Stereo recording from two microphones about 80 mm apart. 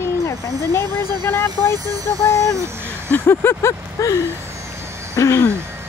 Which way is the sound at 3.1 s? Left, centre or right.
Left.